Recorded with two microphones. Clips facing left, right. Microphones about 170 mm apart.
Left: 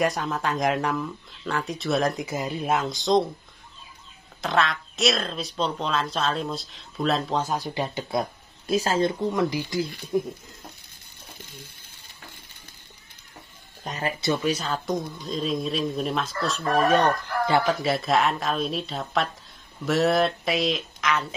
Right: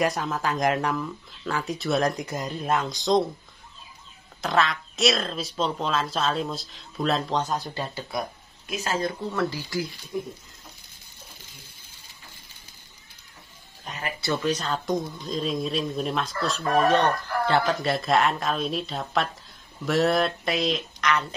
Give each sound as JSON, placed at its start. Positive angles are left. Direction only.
{"t": 0.0, "sound": "speech", "side_deg": 0}
{"t": 4.4, "sound": "speech", "side_deg": 0}
{"t": 8.6, "sound": "speech", "side_deg": 35}
{"t": 9.3, "sound": "speech", "side_deg": 15}
{"t": 10.1, "sound": "speech", "side_deg": 55}
{"t": 13.8, "sound": "music", "side_deg": 40}
{"t": 14.2, "sound": "speech", "side_deg": 15}